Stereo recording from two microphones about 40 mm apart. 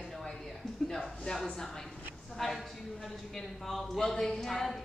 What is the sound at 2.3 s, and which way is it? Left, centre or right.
A woman's voice, centre.